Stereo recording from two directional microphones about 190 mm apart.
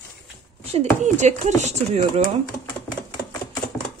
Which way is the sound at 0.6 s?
35° right (ahead or behind).